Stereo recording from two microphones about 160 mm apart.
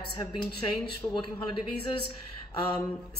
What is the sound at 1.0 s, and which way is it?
Speech, 20° left (ahead or behind).